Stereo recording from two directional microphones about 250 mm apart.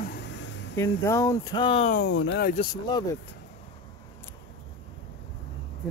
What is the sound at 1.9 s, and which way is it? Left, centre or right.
Speech, left.